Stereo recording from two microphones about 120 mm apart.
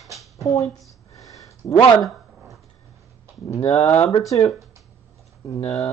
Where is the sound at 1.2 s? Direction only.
30° left (ahead or behind).